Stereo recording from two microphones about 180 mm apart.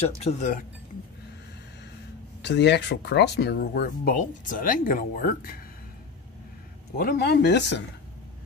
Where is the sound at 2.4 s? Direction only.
70° left (ahead or behind); by 5.5 s 55° left (ahead or behind).